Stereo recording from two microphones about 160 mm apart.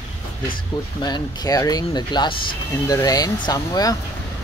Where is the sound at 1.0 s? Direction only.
25° left (ahead or behind).